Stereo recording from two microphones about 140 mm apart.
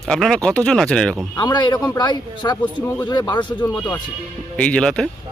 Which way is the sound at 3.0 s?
30° left (ahead or behind).